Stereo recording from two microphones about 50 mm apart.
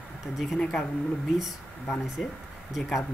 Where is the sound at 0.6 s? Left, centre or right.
Centre.